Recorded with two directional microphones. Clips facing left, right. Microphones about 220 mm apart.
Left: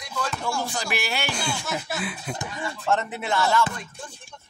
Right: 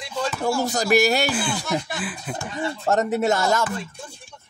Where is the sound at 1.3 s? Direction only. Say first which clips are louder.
Right 5 dB; 5° right (ahead or behind).